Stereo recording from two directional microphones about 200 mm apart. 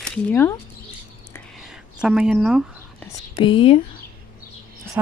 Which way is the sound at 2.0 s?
5° right (ahead or behind).